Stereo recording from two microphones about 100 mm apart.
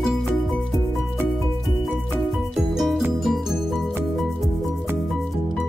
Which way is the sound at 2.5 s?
Centre (ahead or behind).